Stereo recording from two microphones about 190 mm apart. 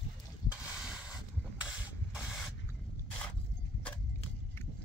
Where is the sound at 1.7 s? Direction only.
5° right (ahead or behind).